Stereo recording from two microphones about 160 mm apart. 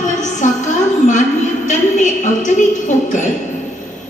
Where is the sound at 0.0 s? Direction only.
50° left (ahead or behind).